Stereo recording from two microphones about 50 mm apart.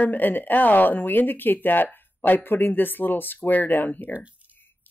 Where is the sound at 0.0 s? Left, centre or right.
Left.